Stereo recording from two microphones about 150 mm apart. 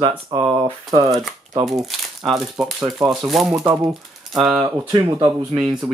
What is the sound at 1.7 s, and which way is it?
Speech, centre (ahead or behind).